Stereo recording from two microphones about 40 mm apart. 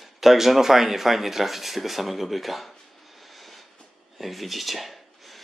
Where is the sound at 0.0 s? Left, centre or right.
Centre.